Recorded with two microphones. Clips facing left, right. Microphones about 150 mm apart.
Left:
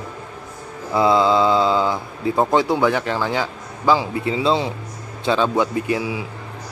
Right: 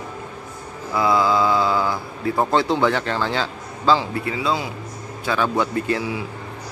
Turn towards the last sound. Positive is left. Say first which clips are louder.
# left 1 dB
turn(degrees=15)  # may be behind; listen again after turning